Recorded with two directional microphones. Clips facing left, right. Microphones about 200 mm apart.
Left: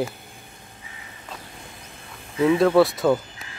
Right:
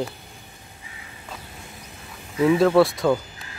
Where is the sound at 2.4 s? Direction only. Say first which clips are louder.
Even; centre (ahead or behind).